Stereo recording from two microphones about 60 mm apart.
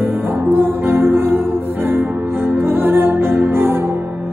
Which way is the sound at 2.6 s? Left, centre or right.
Right.